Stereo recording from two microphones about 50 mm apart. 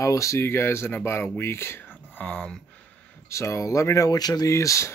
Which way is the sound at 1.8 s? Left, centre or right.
Left.